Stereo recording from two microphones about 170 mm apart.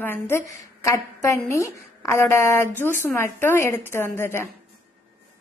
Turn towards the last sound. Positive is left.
turn(degrees=15)  # may be behind; listen again after turning